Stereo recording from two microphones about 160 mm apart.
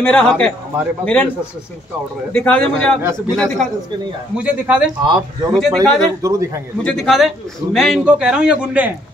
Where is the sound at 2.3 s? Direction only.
10° left (ahead or behind).